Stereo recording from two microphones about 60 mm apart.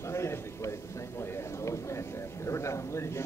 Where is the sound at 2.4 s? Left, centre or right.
Left.